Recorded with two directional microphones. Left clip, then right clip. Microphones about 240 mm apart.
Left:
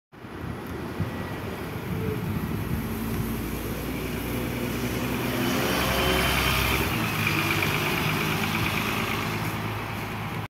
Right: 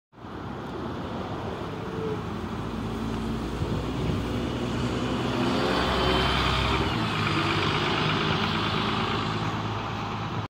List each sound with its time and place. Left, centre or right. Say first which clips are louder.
5.7 s vehicle: left 1 dB; centre